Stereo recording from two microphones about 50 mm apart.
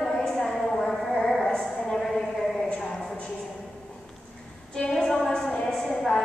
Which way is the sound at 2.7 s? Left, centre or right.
Centre.